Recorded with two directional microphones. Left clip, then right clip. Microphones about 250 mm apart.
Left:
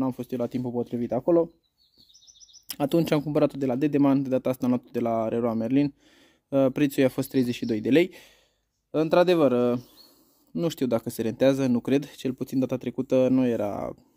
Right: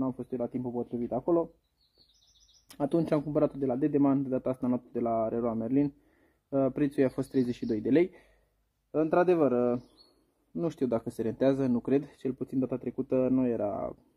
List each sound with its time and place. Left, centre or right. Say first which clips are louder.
0.0 s speech: left 4 dB; left
2.7 s speech: left 4 dB; left
10.5 s speech: left 4 dB; left